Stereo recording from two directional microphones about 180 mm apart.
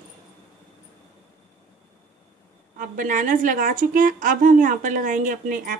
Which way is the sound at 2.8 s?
45° right (ahead or behind).